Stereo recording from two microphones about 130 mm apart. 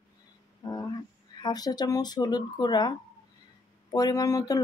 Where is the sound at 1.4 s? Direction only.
30° left (ahead or behind).